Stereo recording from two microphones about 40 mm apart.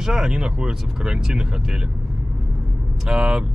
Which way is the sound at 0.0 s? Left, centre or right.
Centre.